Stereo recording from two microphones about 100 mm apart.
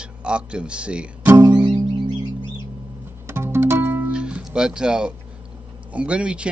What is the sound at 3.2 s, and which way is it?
Music, 25° right (ahead or behind).